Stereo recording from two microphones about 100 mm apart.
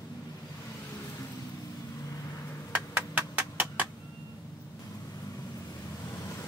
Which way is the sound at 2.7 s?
20° right (ahead or behind).